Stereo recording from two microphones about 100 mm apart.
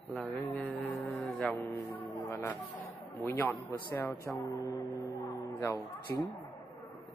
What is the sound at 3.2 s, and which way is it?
Speech, 20° left (ahead or behind).